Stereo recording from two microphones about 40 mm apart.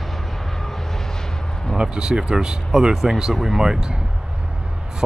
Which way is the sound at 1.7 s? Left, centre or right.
Centre.